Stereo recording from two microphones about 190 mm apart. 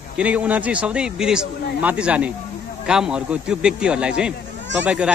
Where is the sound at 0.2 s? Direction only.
5° right (ahead or behind).